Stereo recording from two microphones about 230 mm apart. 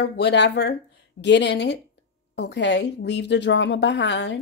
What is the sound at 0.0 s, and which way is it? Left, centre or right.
Speech, left.